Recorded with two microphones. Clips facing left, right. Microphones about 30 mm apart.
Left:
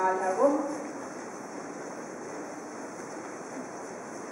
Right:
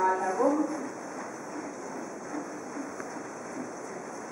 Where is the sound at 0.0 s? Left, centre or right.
Centre.